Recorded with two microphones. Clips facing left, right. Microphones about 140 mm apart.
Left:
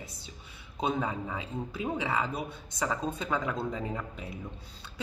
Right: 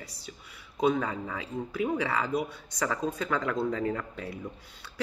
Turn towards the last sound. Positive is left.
turn(degrees=20)  # may be behind; listen again after turning